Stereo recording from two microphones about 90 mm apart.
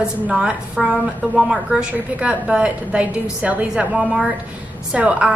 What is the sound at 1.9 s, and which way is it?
A woman's voice, 15° right (ahead or behind).